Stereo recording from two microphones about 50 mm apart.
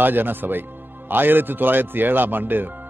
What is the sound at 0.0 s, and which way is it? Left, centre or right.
A man's voice, right.